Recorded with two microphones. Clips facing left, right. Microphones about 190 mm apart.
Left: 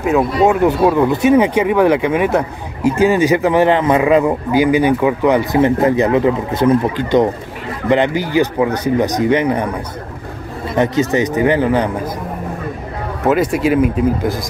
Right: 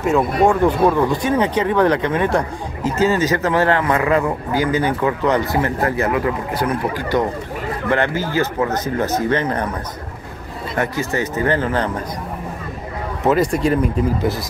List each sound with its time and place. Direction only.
0.5 s speech: 10° left (ahead or behind)
10.8 s speech: 20° left (ahead or behind)
13.3 s speech: centre (ahead or behind)